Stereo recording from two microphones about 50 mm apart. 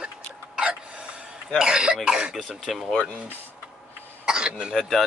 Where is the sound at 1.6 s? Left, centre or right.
Centre.